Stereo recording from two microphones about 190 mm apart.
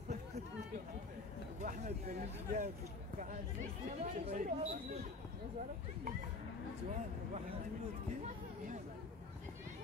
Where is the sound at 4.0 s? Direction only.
40° right (ahead or behind).